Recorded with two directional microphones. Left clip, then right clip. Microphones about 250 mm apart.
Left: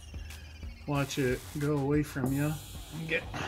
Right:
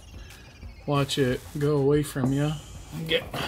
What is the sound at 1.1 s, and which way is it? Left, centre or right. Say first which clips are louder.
Speech: right 5 dB; centre.